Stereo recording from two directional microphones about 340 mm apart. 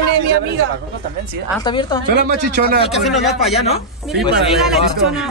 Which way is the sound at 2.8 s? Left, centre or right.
Centre.